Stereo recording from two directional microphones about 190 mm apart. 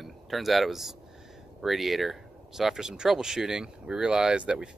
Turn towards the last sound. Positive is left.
turn(degrees=-5)  # may be behind; listen again after turning